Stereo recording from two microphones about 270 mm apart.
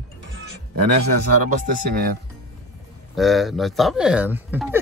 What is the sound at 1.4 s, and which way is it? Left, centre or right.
Speech, right.